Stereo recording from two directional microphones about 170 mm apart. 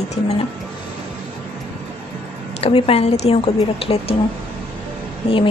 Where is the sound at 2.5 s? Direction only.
35° left (ahead or behind).